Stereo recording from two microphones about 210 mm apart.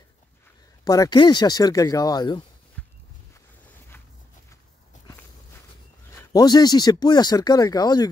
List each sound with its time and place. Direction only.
0.8 s speech: 15° left (ahead or behind)
6.0 s speech: 15° left (ahead or behind)